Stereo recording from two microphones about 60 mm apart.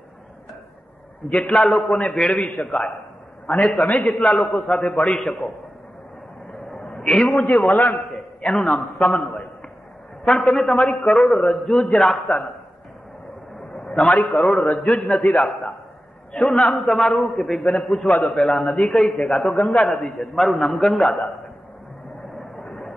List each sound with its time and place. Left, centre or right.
1.7 s a man's voice: centre
3.8 s a man's voice: left
4.1 s a man's voice: centre
6.5 s a sound: centre
10.2 s a man's voice: centre
14.0 s a man's voice: centre
14.3 s a man's voice: centre
18.9 s a man's voice: centre
19.3 s a man's voice: centre
22.4 s vehicle: centre